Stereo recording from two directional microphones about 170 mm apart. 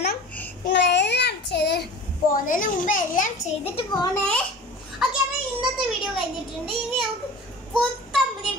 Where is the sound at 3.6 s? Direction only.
35° left (ahead or behind).